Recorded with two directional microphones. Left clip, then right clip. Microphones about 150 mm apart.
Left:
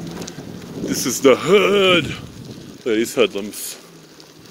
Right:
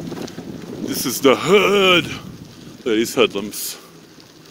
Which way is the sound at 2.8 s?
70° right (ahead or behind).